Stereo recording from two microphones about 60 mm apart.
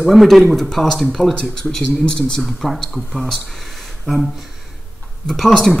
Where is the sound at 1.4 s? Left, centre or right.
Centre.